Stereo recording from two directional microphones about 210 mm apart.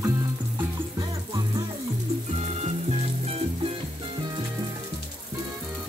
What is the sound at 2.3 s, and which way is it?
Music, 30° right (ahead or behind).